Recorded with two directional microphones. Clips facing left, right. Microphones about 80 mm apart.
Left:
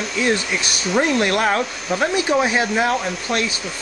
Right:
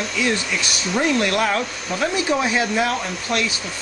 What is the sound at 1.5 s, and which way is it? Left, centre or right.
Speech, centre.